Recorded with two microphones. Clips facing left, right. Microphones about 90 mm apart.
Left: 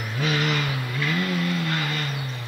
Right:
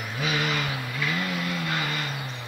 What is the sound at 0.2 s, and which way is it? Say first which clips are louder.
Vehicle: left 3 dB; 10° right (ahead or behind).